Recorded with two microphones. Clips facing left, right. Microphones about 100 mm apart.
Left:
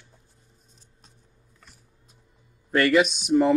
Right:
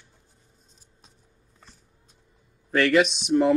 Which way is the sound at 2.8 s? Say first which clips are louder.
Even; centre (ahead or behind).